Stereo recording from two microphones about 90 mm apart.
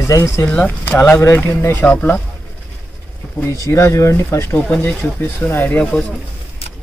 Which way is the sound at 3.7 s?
30° left (ahead or behind).